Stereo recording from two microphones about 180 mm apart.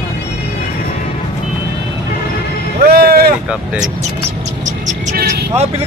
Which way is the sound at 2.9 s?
60° right (ahead or behind).